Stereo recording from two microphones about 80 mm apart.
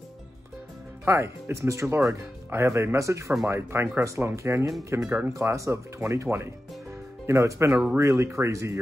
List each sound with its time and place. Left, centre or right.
1.0 s speech: right